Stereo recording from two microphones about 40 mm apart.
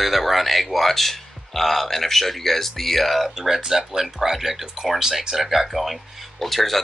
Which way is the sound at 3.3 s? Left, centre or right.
Centre.